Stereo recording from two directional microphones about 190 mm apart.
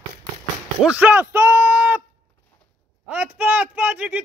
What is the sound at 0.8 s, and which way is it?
Speech, 5° right (ahead or behind).